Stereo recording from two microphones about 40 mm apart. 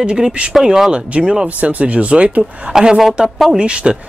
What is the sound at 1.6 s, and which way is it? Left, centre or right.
Speech, right.